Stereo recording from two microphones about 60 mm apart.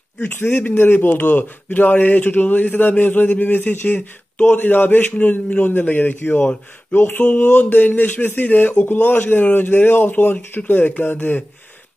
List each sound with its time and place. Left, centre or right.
0.4 s a man's voice: left